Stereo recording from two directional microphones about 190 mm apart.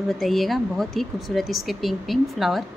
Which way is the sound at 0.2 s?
Centre (ahead or behind).